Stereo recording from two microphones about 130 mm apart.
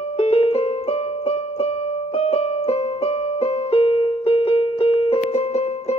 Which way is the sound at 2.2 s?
50° left (ahead or behind).